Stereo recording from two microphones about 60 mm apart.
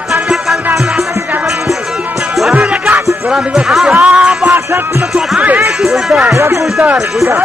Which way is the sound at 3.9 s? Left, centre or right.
Centre.